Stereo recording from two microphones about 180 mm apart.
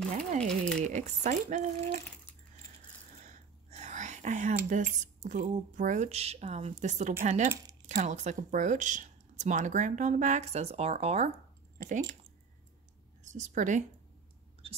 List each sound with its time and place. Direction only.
0.4 s speech: 5° left (ahead or behind)
0.8 s speech: 40° right (ahead or behind)
3.2 s speech: 40° right (ahead or behind)
13.2 s a woman's voice: 45° right (ahead or behind)